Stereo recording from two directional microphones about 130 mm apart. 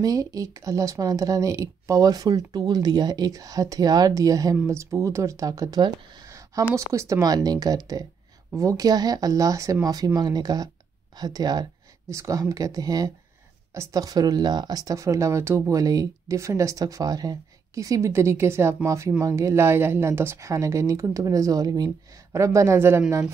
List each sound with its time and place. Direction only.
0.0 s speech: 25° right (ahead or behind)